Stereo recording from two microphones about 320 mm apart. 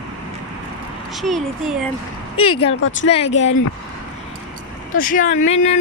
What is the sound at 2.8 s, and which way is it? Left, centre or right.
Speech, left.